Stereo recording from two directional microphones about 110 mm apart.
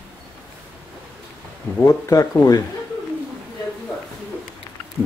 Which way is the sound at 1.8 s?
30° left (ahead or behind).